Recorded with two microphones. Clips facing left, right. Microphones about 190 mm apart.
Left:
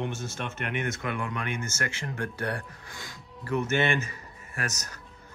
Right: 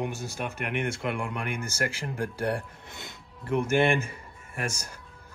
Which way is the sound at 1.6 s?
30° right (ahead or behind).